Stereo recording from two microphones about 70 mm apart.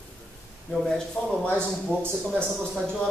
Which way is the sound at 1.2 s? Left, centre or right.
Centre.